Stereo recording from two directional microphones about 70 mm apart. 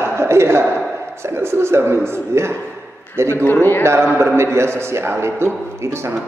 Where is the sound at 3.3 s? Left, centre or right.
Left.